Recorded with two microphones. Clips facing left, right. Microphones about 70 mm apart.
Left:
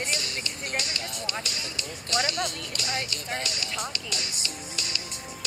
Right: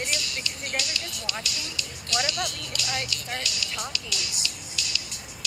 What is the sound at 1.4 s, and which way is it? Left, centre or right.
Speech, left.